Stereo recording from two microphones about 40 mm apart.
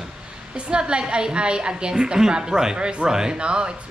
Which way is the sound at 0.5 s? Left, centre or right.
Right.